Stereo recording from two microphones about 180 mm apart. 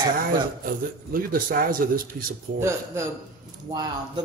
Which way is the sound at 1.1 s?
50° right (ahead or behind).